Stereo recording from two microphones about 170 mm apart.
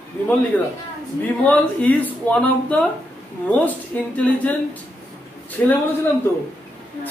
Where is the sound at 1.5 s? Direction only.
10° left (ahead or behind).